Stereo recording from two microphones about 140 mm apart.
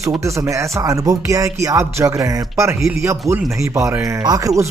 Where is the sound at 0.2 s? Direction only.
20° right (ahead or behind).